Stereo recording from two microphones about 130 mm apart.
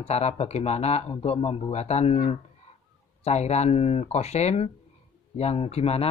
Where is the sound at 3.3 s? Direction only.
60° left (ahead or behind).